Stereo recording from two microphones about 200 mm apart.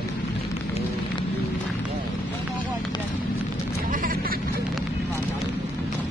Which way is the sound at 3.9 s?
45° right (ahead or behind).